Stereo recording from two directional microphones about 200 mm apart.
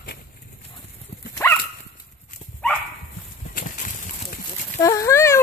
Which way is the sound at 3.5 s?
40° left (ahead or behind).